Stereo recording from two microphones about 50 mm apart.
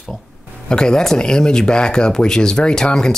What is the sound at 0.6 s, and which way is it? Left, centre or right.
Speech, centre.